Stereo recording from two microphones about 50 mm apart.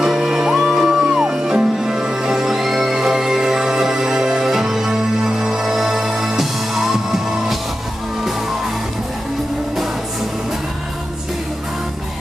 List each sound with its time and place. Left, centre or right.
0.0 s music: centre